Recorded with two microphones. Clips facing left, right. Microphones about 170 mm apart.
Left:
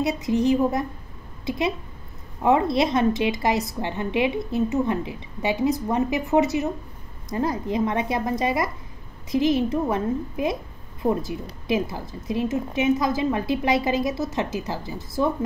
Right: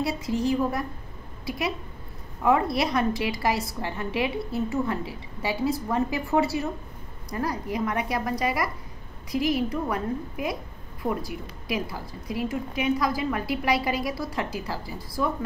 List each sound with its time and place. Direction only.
0.0 s a woman's voice: 20° left (ahead or behind)